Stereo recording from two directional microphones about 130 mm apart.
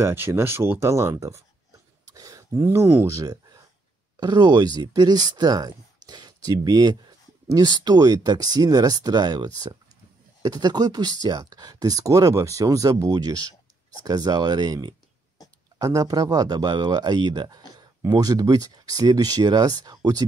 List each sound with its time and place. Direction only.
0.0 s speech: 20° right (ahead or behind)
4.2 s speech: 35° right (ahead or behind)